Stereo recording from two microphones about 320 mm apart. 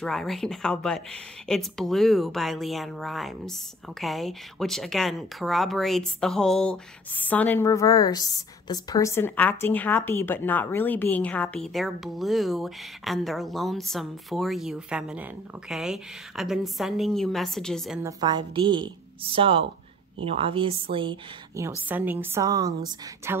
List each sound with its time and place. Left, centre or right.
0.0 s a woman's voice: centre
18.2 s a woman's voice: centre